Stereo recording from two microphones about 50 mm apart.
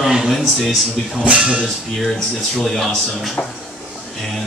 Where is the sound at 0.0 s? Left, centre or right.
Centre.